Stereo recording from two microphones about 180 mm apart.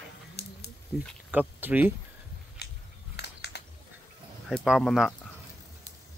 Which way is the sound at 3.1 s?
65° left (ahead or behind).